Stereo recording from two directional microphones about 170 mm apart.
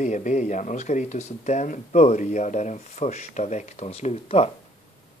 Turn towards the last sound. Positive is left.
turn(degrees=40)  # may be behind; listen again after turning